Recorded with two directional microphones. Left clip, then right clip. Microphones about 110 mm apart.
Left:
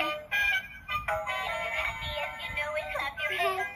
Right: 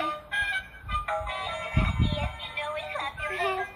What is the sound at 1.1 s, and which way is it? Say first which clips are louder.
Music: left 2 dB; 25° left (ahead or behind).